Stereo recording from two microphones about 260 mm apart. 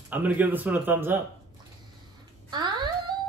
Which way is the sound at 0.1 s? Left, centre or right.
Centre.